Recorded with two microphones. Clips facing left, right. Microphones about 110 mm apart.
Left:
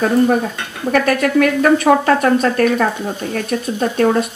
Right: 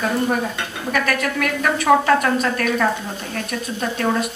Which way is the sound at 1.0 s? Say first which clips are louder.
Left 8 dB; 40° left (ahead or behind).